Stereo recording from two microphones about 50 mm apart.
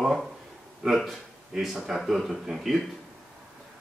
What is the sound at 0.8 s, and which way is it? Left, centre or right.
Speech, centre.